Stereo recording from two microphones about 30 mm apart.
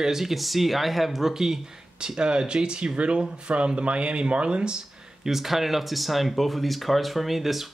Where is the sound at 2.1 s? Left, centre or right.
Right.